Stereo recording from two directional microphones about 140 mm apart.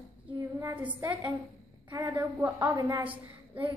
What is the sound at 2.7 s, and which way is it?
Speech, 25° right (ahead or behind).